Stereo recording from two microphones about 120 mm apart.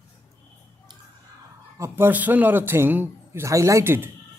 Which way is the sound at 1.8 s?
20° right (ahead or behind).